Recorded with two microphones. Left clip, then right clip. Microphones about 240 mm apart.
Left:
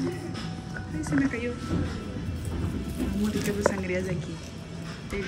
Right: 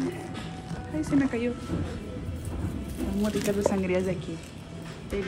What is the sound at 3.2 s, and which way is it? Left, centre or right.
Speech, centre.